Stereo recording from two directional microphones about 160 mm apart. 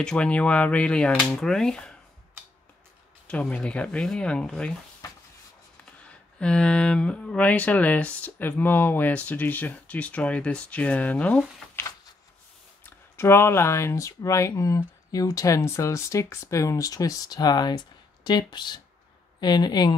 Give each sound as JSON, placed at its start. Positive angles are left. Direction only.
{"t": 0.0, "sound": "speech", "side_deg": 5}
{"t": 3.3, "sound": "speech", "side_deg": 10}
{"t": 6.0, "sound": "speech", "side_deg": 5}
{"t": 12.8, "sound": "speech", "side_deg": 15}